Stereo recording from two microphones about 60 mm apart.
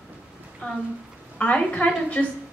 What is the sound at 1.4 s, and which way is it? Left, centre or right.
Speech, left.